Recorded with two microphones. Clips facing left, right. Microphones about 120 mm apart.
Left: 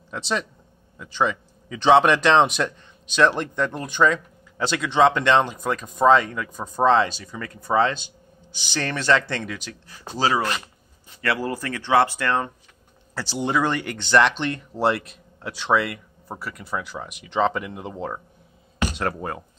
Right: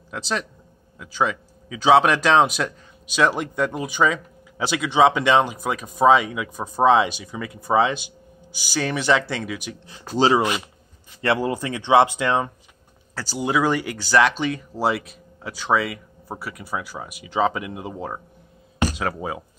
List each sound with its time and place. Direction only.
0.1 s speech: centre (ahead or behind); by 12.4 s 15° right (ahead or behind)
13.1 s speech: centre (ahead or behind)